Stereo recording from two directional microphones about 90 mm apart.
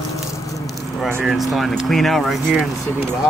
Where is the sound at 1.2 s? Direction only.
Centre (ahead or behind).